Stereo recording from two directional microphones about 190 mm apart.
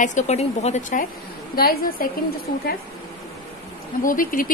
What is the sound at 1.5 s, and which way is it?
Speech, 50° left (ahead or behind).